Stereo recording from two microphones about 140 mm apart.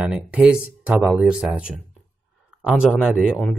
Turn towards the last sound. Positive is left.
turn(degrees=-5)  # may be behind; listen again after turning